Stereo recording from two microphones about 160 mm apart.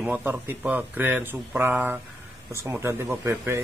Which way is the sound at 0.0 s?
10° right (ahead or behind).